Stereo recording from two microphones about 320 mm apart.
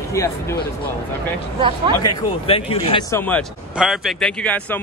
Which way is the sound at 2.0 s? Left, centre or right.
Centre.